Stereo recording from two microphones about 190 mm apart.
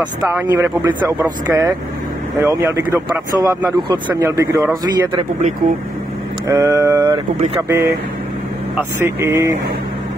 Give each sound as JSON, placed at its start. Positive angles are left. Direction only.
{"t": 0.0, "sound": "speech", "side_deg": -15}
{"t": 6.4, "sound": "speech", "side_deg": -20}